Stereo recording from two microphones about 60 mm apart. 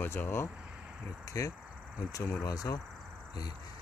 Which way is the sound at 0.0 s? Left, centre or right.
Left.